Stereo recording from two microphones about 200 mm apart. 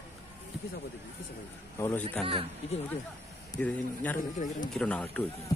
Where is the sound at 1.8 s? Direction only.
10° left (ahead or behind).